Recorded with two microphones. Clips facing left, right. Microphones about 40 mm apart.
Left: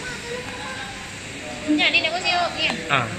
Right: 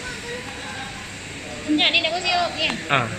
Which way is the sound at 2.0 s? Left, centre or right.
Left.